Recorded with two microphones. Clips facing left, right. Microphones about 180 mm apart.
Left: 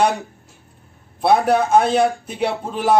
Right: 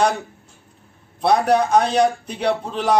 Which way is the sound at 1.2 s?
5° left (ahead or behind).